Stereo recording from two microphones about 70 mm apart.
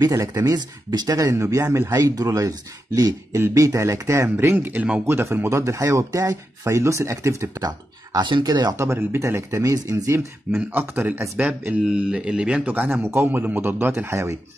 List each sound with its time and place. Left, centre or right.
0.0 s speech: right
0.6 s speech: right
1.0 s speech: right
1.3 s speech: right
2.0 s speech: right
3.3 s speech: right
3.6 s speech: right
7.6 s speech: right
8.7 s speech: right
10.5 s speech: right